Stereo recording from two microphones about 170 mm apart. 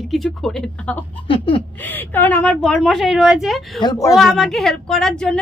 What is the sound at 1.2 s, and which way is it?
Speech, 30° left (ahead or behind).